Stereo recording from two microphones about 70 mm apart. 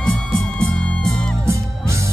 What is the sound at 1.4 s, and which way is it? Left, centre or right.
Music, right.